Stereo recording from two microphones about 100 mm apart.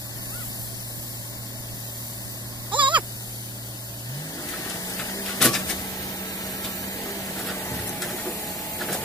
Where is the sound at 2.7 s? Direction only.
55° right (ahead or behind).